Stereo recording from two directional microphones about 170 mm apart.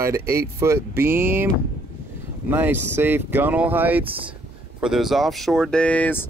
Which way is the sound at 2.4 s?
10° right (ahead or behind).